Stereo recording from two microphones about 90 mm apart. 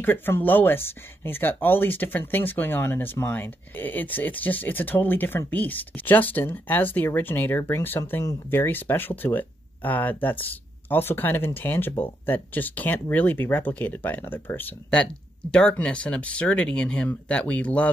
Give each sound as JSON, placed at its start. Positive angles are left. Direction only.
{"t": 0.0, "sound": "speech", "side_deg": 25}
{"t": 15.5, "sound": "speech", "side_deg": 10}